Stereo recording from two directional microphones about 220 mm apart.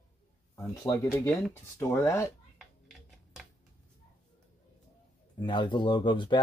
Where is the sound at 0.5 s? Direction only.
15° left (ahead or behind).